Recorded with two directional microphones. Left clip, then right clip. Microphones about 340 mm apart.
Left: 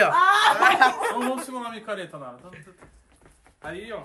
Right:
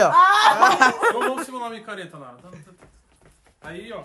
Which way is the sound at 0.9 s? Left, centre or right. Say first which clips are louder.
Right 4 dB; right.